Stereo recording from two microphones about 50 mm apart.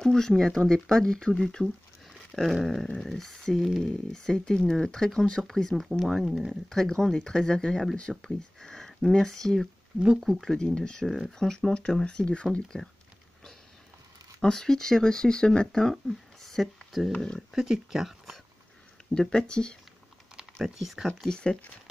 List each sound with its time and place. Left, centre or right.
0.0 s speech: centre
6.0 s speech: centre
6.7 s speech: centre
11.1 s speech: centre
14.4 s speech: centre
19.1 s speech: centre
20.6 s speech: centre
21.3 s speech: left